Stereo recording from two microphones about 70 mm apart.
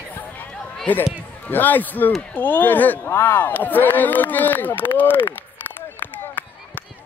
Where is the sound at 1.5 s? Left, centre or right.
Left.